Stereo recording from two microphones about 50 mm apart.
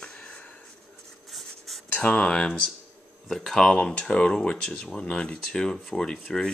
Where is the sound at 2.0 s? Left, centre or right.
Left.